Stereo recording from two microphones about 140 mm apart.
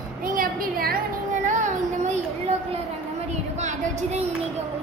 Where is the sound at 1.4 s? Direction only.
60° right (ahead or behind).